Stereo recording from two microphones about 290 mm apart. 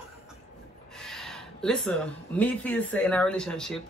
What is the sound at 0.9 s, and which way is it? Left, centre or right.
Speech, centre.